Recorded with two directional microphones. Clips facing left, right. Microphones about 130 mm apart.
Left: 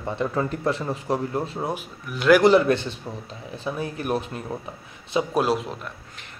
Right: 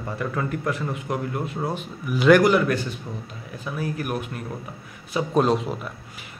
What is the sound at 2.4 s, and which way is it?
Speech, 25° left (ahead or behind).